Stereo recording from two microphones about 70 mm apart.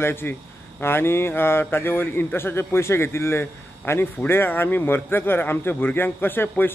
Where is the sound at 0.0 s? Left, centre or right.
Left.